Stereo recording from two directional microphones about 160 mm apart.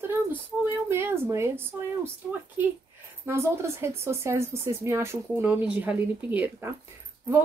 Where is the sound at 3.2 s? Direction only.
15° right (ahead or behind).